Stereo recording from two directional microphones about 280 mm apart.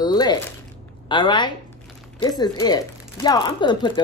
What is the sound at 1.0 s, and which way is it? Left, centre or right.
A woman's voice, centre.